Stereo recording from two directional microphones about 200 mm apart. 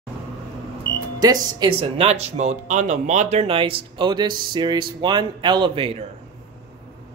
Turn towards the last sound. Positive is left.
turn(degrees=-25)  # may be behind; listen again after turning